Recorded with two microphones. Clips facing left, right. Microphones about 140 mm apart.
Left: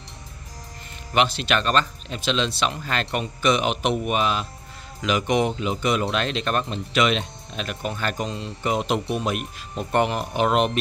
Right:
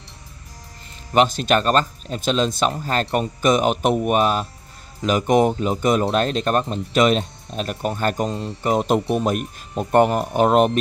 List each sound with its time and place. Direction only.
1.1 s speech: 45° right (ahead or behind)